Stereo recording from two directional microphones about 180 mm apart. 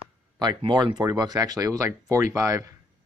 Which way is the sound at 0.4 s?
25° right (ahead or behind).